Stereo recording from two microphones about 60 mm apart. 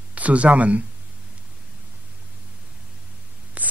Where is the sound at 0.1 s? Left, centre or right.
Right.